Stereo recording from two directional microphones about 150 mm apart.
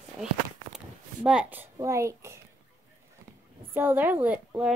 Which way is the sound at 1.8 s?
20° right (ahead or behind).